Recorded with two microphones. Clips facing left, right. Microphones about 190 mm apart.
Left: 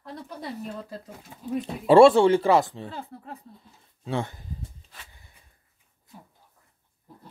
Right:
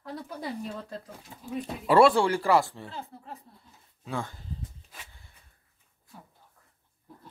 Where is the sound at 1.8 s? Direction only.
25° left (ahead or behind).